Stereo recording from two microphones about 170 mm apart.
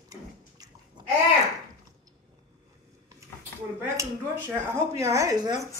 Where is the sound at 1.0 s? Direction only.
25° right (ahead or behind).